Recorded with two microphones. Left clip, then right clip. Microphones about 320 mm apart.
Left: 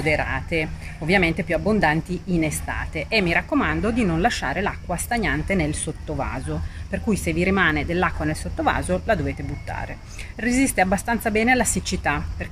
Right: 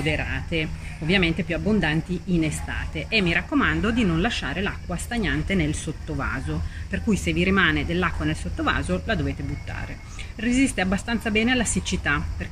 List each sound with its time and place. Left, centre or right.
0.0 s speech: centre
10.4 s speech: centre